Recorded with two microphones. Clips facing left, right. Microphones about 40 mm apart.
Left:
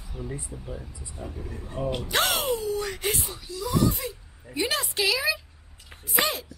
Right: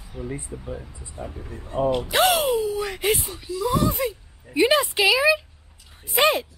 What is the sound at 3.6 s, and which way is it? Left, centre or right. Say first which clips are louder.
Speech: right 3 dB; right.